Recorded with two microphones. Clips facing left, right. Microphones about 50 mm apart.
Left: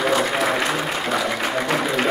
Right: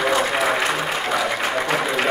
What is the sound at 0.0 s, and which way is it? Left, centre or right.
Applause, centre.